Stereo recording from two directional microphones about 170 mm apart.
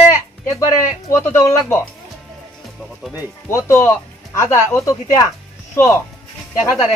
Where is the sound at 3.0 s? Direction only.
5° right (ahead or behind).